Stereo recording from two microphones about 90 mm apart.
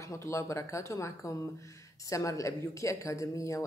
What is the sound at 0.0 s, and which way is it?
A woman's voice, 30° left (ahead or behind).